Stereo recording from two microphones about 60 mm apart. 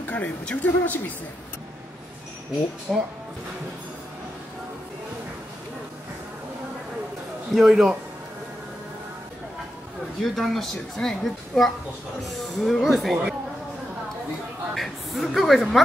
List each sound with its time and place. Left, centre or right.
0.0 s speech: left
2.9 s speech: centre
7.5 s a woman's voice: centre
10.2 s a woman's voice: centre
14.7 s a woman's voice: centre